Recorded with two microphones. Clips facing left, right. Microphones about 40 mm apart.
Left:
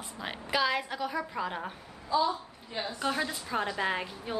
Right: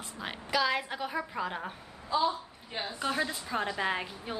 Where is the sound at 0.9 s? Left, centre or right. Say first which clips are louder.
Left 1 dB; centre.